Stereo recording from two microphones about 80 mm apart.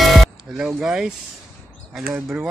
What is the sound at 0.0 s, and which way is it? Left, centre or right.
Music, centre.